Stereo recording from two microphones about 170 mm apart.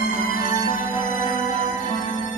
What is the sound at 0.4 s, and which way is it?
Music, 55° left (ahead or behind).